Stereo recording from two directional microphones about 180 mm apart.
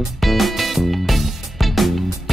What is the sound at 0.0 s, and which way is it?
Music, centre (ahead or behind).